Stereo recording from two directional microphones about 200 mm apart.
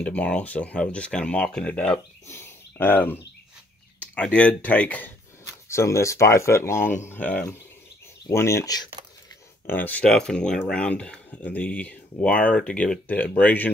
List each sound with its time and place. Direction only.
0.0 s speech: 5° left (ahead or behind)